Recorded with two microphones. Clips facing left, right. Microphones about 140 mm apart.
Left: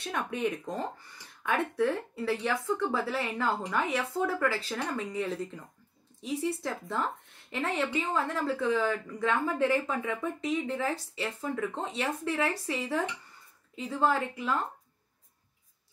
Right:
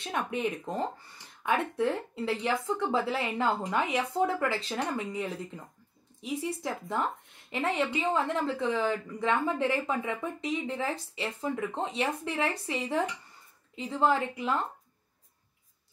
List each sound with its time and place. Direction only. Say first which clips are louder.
0.0 s a woman's voice: even; 20° right (ahead or behind)